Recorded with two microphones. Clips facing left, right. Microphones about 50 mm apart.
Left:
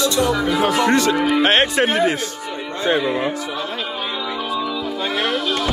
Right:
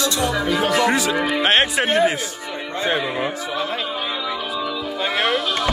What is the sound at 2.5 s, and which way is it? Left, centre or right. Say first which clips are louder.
Music: left 2 dB; centre.